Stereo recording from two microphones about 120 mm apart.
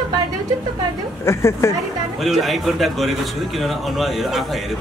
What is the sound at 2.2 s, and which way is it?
A man's voice, centre (ahead or behind).